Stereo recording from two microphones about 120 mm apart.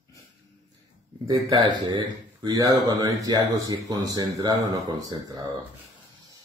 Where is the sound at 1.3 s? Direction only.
40° right (ahead or behind).